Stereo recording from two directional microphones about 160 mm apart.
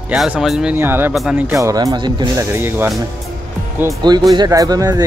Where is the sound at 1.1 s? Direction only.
5° right (ahead or behind).